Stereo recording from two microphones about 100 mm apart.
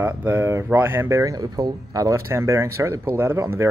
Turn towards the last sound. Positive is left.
turn(degrees=-25)  # may be behind; listen again after turning